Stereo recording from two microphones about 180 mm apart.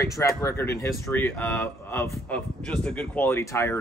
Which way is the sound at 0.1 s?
15° left (ahead or behind).